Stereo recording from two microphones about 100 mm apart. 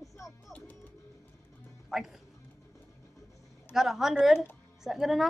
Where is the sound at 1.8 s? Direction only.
5° right (ahead or behind).